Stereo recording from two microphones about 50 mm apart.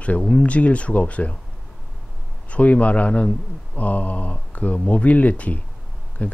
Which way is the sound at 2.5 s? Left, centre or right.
Left.